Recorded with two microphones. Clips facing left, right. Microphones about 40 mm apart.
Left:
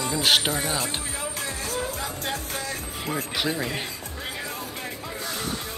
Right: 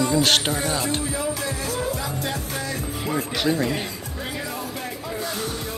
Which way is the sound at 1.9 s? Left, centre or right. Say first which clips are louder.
Right 3 dB; left.